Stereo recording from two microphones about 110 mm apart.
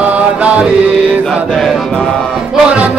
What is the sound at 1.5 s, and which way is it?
Chant, 5° left (ahead or behind).